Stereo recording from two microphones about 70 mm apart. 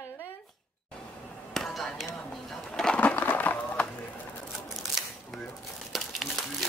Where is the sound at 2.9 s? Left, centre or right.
Left.